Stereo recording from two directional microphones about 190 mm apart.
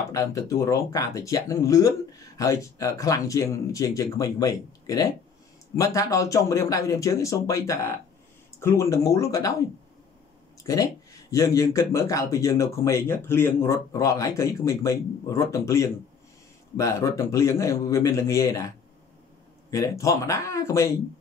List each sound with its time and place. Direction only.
0.1 s speech: 15° left (ahead or behind)
19.7 s speech: 15° left (ahead or behind)